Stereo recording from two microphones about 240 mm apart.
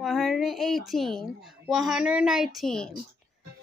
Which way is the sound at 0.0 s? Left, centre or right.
Centre.